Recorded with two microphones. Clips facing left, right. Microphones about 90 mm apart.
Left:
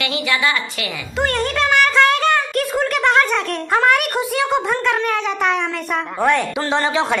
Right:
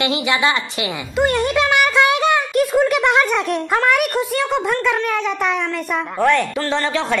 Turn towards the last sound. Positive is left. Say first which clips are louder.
# left 1 dB
turn(degrees=15)  # may be behind; listen again after turning